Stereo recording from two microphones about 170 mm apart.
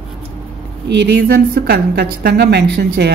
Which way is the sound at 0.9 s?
85° right.